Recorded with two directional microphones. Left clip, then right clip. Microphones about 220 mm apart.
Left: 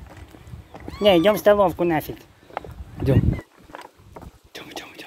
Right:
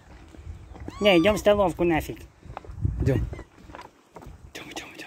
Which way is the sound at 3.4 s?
40° left (ahead or behind).